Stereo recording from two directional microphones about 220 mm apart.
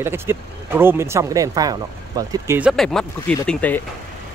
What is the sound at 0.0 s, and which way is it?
Speech, 10° right (ahead or behind).